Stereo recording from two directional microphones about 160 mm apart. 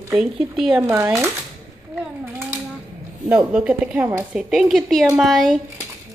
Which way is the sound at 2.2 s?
15° right (ahead or behind).